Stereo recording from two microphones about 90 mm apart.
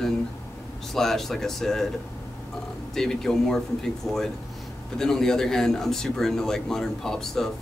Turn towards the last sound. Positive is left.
turn(degrees=5)  # may be behind; listen again after turning